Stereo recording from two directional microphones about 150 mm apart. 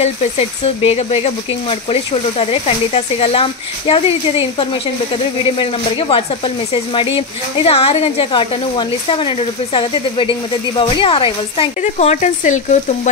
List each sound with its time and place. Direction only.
0.0 s speech: 45° left (ahead or behind)
11.8 s speech: 50° left (ahead or behind)